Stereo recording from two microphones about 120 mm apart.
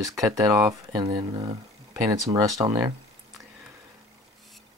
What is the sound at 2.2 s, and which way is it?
Speech, 30° right (ahead or behind).